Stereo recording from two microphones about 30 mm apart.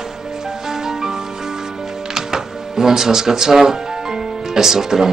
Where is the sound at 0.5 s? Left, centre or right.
Centre.